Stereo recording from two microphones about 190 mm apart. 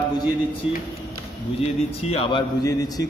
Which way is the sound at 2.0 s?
30° left (ahead or behind).